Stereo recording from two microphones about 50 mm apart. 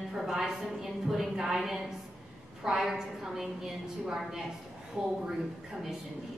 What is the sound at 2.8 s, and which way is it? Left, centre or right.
Speech, centre.